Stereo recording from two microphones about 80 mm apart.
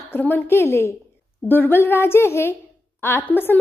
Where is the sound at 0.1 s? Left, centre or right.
Left.